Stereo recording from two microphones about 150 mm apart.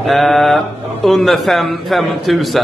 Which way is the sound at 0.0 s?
Centre (ahead or behind).